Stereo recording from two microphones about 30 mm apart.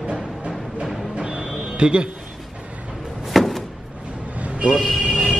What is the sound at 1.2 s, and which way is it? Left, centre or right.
Music, right.